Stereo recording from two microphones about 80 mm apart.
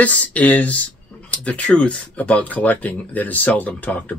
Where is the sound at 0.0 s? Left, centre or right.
Centre.